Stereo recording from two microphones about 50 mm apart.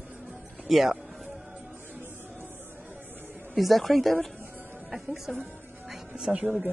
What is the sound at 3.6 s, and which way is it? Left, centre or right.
Speech, centre.